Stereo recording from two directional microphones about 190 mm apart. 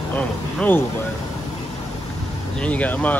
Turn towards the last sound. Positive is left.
turn(degrees=10)  # may be behind; listen again after turning